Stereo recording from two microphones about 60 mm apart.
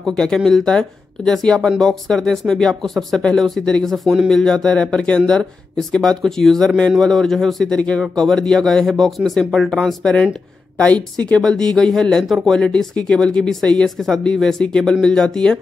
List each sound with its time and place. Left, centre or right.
0.0 s a woman's voice: centre